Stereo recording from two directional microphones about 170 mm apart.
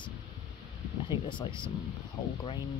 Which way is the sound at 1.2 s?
30° left (ahead or behind).